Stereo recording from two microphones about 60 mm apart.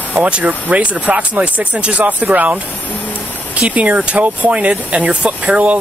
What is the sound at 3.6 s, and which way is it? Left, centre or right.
Speech, right.